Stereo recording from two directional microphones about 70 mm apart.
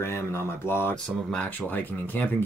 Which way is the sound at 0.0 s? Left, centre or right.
Left.